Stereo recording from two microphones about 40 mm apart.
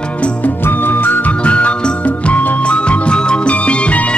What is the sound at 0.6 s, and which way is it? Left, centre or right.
Music, left.